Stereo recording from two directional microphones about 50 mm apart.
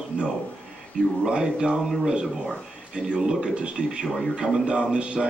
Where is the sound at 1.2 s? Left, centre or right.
Centre.